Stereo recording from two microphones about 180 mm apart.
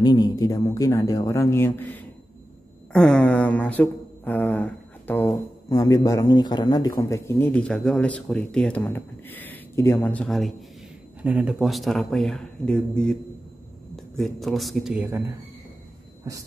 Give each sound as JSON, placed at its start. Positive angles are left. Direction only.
{"t": 0.0, "sound": "a man's voice", "side_deg": 20}